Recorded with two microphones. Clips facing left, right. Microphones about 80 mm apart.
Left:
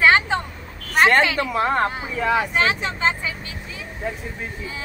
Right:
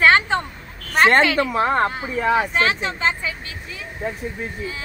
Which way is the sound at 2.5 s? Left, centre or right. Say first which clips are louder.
Right 1 dB; left.